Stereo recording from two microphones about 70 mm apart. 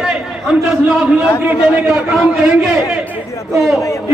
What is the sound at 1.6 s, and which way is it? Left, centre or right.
Speech, centre.